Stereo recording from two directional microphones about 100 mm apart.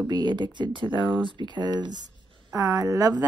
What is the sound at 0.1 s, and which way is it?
A woman's voice, 50° right (ahead or behind).